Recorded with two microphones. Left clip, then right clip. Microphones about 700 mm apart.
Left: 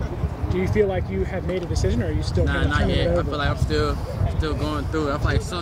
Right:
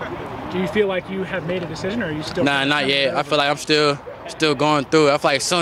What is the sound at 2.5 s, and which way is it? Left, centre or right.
Speech, right.